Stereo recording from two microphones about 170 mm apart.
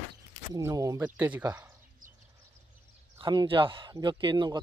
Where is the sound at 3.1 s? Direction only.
25° right (ahead or behind).